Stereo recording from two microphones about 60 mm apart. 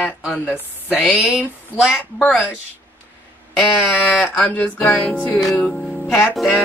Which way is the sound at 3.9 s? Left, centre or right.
Left.